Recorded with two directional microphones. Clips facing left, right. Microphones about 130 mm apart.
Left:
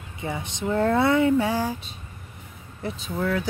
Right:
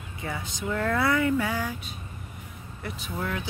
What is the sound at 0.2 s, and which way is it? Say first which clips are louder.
Speech: left 4 dB; 25° left (ahead or behind).